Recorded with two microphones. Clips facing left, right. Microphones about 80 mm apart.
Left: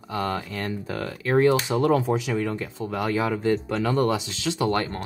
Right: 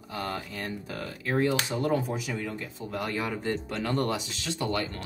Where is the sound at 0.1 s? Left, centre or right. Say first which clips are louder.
Left 6 dB; left.